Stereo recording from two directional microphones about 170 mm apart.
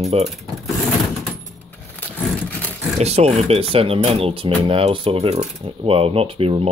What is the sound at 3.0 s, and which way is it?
Speech, 40° right (ahead or behind).